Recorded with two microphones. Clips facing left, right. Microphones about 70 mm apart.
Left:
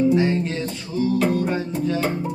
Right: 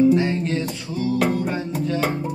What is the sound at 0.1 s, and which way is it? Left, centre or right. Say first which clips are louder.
Music: even; centre.